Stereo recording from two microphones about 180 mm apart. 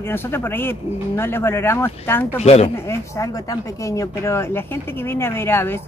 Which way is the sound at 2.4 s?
35° left (ahead or behind).